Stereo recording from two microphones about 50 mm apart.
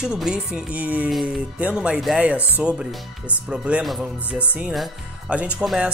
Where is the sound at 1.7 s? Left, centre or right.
Centre.